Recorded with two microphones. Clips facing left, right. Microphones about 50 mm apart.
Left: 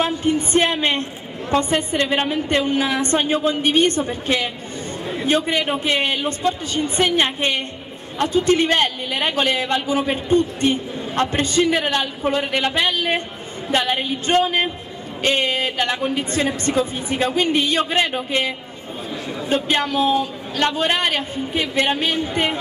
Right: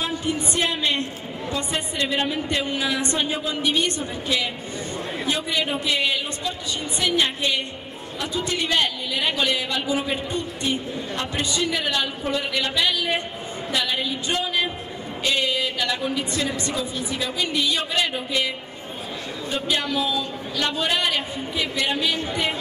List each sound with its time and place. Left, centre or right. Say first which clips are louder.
0.0 s a woman's voice: left 6 dB; left
19.5 s a man's voice: left 5 dB; left